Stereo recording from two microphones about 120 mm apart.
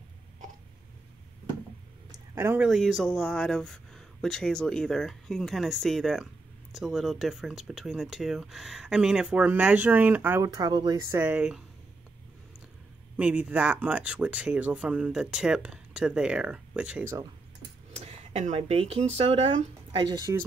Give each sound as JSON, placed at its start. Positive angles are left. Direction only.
{"t": 2.3, "sound": "speech", "side_deg": -20}
{"t": 2.6, "sound": "speech", "side_deg": 0}
{"t": 10.4, "sound": "speech", "side_deg": -35}
{"t": 11.0, "sound": "speech", "side_deg": -25}
{"t": 11.2, "sound": "speech", "side_deg": -10}
{"t": 13.1, "sound": "speech", "side_deg": -10}
{"t": 17.9, "sound": "speech", "side_deg": -60}